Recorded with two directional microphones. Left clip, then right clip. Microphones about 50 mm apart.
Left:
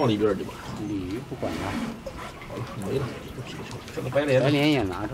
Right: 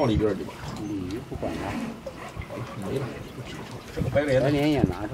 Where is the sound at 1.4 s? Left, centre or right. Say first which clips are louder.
Left 1 dB; left.